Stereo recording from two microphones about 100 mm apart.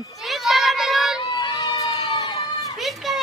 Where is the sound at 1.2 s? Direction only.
50° left (ahead or behind).